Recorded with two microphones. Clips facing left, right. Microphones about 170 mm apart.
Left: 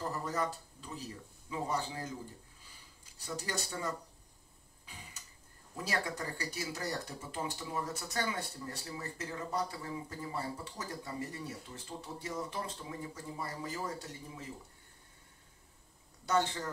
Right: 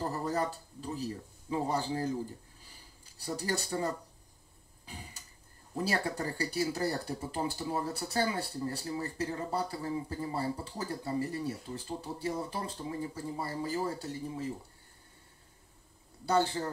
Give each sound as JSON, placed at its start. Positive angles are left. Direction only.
{"t": 0.0, "sound": "speech", "side_deg": -35}
{"t": 3.3, "sound": "speech", "side_deg": -35}
{"t": 4.8, "sound": "tick-tock", "side_deg": -35}
{"t": 5.8, "sound": "speech", "side_deg": -35}
{"t": 16.3, "sound": "speech", "side_deg": -30}